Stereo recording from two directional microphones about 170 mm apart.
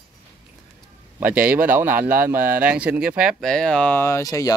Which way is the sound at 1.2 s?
10° right (ahead or behind).